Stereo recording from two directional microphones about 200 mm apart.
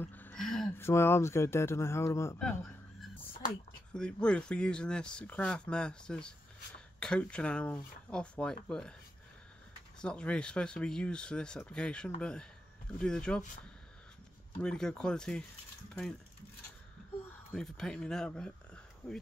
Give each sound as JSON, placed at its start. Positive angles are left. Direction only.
{"t": 0.0, "sound": "a man's voice", "side_deg": 10}
{"t": 9.9, "sound": "speech", "side_deg": 5}
{"t": 14.6, "sound": "speech", "side_deg": 5}
{"t": 17.5, "sound": "speech", "side_deg": 5}